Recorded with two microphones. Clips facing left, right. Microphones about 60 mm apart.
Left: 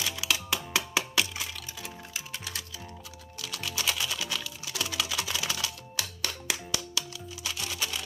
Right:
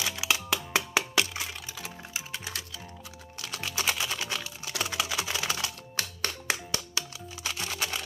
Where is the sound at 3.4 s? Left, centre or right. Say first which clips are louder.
Right 1 dB; right.